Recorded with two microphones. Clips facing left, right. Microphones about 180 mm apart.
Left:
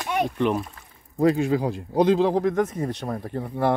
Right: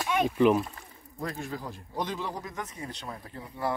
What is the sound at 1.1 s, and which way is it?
A man's voice, 85° left.